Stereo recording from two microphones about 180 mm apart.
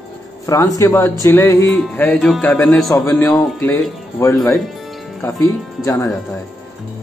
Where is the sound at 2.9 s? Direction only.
15° left (ahead or behind).